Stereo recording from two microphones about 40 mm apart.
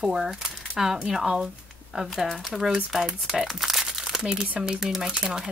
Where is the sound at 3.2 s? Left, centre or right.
Centre.